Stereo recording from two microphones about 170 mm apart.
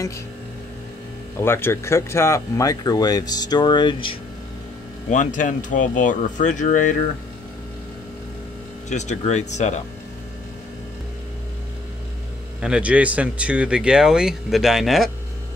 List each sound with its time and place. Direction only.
1.4 s speech: 15° left (ahead or behind)
5.1 s speech: 50° left (ahead or behind)
8.8 s speech: 45° left (ahead or behind)
12.5 s speech: 5° right (ahead or behind)